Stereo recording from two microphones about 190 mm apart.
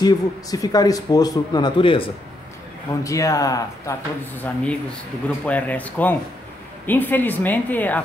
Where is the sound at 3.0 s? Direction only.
15° left (ahead or behind).